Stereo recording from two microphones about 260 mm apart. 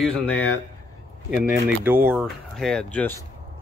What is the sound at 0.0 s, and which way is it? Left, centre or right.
Speech, centre.